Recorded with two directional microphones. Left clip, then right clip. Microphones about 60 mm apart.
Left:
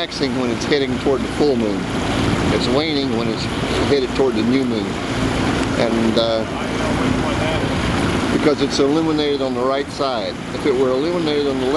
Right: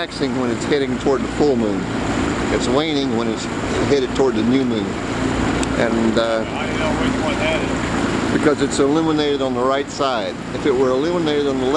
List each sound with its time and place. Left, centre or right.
6.1 s speech: left
8.5 s speech: centre
10.9 s speech: left